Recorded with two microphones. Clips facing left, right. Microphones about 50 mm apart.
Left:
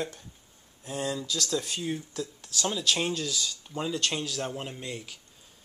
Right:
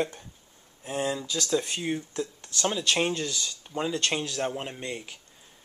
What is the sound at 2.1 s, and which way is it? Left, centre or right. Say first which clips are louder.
Speech: right 2 dB; right.